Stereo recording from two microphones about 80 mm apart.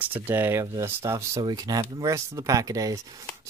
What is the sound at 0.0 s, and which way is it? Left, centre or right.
Speech, right.